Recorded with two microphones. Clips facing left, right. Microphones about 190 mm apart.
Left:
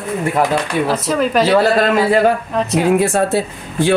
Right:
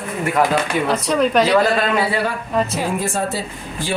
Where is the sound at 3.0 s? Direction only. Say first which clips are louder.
Left 7 dB; 65° left (ahead or behind).